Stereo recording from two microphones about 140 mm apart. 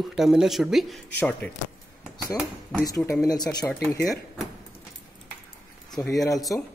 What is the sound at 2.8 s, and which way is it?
Speech, 25° left (ahead or behind).